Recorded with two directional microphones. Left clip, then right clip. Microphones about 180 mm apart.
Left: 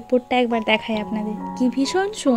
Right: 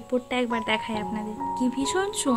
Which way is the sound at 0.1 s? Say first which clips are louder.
Left 7 dB; 20° left (ahead or behind).